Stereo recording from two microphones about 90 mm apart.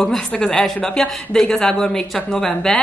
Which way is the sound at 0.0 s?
10° left (ahead or behind).